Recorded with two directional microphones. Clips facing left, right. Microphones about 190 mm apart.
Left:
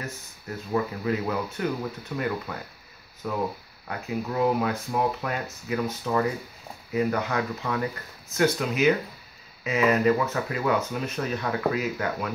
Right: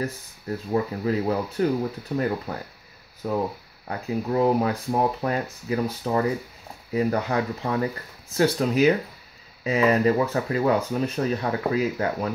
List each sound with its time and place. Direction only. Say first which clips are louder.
0.7 s speech: right 2 dB; 35° right (ahead or behind)